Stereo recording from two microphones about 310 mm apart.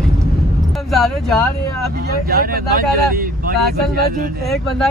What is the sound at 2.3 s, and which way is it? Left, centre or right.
Speech, right.